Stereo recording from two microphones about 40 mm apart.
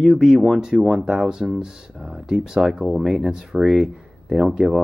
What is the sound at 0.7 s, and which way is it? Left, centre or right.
Speech, right.